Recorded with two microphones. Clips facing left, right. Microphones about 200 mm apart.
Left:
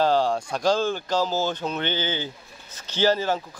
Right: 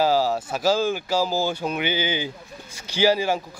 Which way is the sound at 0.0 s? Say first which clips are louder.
Right 1 dB; 5° right (ahead or behind).